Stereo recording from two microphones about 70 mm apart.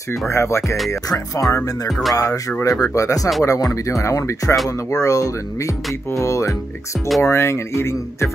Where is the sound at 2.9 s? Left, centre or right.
Left.